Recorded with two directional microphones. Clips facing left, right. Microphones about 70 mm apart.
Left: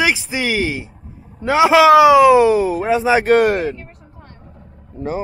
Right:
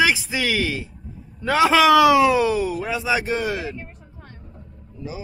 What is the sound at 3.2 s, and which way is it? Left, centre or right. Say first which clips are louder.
Speech: left 11 dB; left.